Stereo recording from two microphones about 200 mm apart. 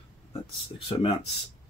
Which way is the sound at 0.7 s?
25° left (ahead or behind).